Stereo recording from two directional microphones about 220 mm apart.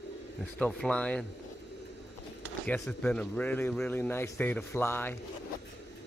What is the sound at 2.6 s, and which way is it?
Speech, 5° left (ahead or behind).